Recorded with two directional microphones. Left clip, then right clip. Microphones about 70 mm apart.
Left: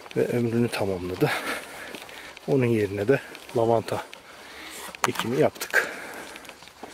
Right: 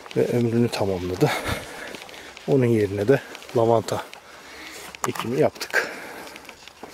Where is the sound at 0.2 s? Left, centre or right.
Right.